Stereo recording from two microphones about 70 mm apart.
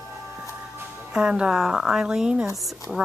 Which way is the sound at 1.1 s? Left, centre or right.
Centre.